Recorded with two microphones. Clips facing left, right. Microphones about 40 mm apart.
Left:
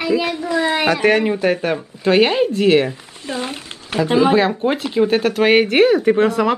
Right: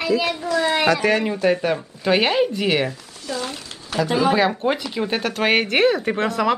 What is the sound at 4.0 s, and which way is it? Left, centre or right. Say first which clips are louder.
Speech: left 4 dB; left.